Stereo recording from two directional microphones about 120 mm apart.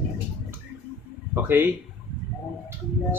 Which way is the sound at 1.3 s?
20° right (ahead or behind).